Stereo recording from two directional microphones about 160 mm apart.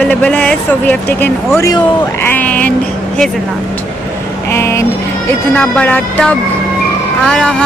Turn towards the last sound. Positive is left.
turn(degrees=5)  # may be behind; listen again after turning